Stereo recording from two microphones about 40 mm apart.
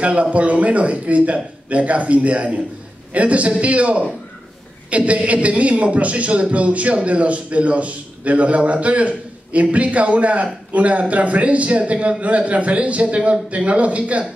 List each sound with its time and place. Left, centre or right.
0.0 s a man's voice: right